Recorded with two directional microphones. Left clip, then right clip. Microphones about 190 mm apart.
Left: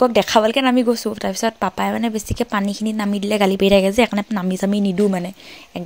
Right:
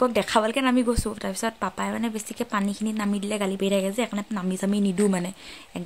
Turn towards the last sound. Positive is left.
turn(degrees=15)  # may be behind; listen again after turning